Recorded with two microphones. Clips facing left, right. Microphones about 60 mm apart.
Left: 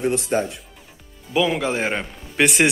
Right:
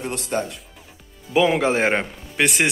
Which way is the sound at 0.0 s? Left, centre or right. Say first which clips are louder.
Left 4 dB; left.